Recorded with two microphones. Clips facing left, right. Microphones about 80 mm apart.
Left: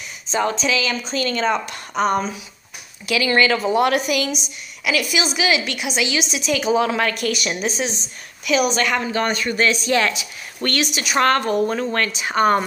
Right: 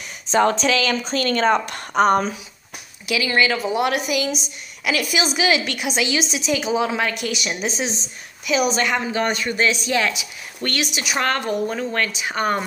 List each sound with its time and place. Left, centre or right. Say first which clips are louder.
0.3 s a woman's voice: right 3 dB; right
3.1 s speech: left 2 dB; centre
4.8 s a woman's voice: even; right
8.8 s speech: left 1 dB; centre